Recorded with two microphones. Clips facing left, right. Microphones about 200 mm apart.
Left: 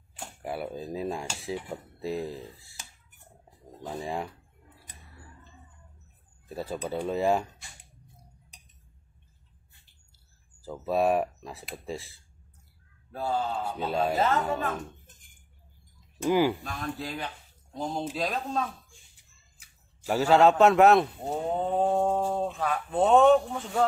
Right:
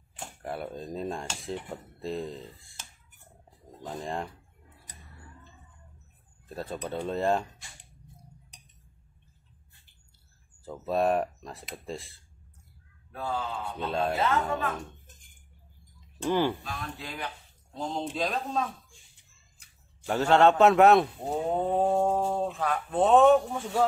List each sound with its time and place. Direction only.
0.4 s speech: 5° left (ahead or behind)
6.5 s speech: 5° left (ahead or behind)
10.6 s speech: 5° left (ahead or behind)
13.1 s speech: 35° left (ahead or behind)
13.7 s speech: 5° left (ahead or behind)
14.1 s speech: 40° left (ahead or behind)
16.3 s speech: 10° left (ahead or behind)
17.7 s speech: 5° left (ahead or behind)